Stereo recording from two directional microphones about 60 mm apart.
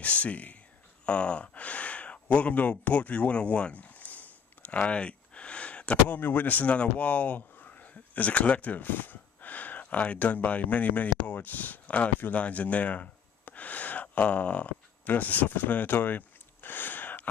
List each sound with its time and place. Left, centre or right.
0.0 s speech: left